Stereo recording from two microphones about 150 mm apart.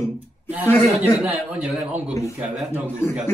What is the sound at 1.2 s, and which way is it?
A man's voice, 10° right (ahead or behind).